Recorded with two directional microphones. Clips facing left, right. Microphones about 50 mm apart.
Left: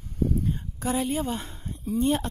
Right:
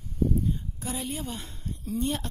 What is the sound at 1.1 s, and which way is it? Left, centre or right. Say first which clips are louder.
Speech: left 7 dB; left.